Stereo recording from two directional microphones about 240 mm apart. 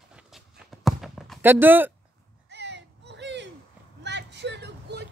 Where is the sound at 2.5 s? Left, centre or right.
Right.